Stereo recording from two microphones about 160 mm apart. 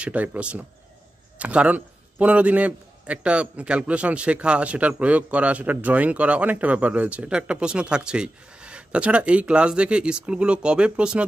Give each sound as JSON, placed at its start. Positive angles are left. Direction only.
{"t": 0.0, "sound": "a man's voice", "side_deg": -10}